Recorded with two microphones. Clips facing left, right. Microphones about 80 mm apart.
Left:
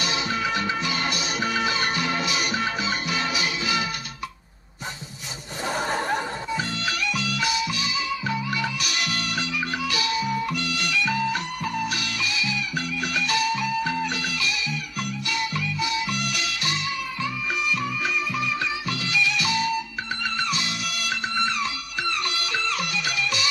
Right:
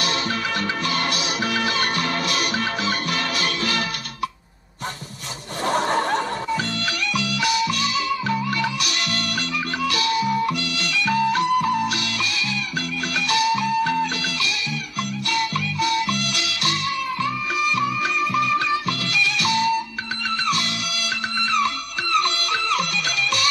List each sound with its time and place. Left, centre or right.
0.0 s music: right
5.7 s laughter: right
6.8 s music: right
13.3 s music: right